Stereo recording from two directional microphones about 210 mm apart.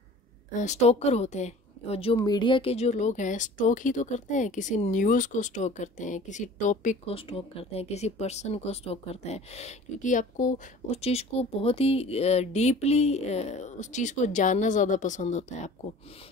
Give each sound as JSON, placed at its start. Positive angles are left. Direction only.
{"t": 0.6, "sound": "speech", "side_deg": 35}